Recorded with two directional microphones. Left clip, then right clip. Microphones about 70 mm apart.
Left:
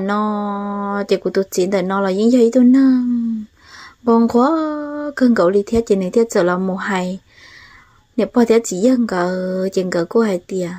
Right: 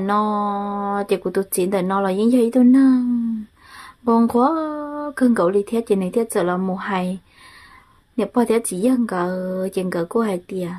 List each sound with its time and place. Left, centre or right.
0.0 s music: left
0.9 s speech: left
3.7 s a sound: left
4.3 s speech: left
6.7 s speech: left
8.2 s speech: left